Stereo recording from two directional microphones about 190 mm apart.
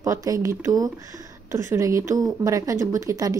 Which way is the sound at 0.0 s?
15° right (ahead or behind).